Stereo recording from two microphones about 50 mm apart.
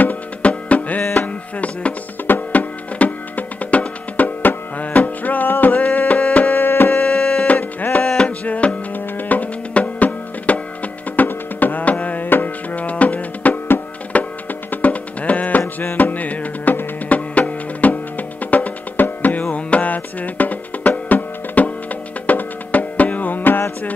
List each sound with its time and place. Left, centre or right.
0.0 s music: left
6.5 s a sound: left
7.1 s music: centre
7.4 s music: left
8.0 s a sound: centre
8.5 s music: left
15.6 s music: left
16.0 s music: left